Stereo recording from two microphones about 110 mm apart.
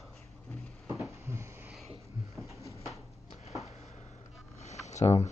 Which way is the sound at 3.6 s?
75° left (ahead or behind).